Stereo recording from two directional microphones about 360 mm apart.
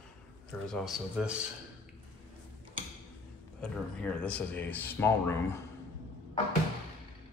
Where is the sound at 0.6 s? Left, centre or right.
Centre.